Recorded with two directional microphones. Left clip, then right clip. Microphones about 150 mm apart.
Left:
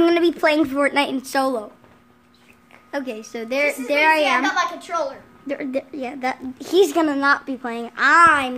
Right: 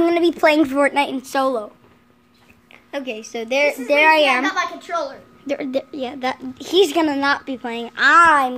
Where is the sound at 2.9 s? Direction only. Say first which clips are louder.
Even; 5° left (ahead or behind).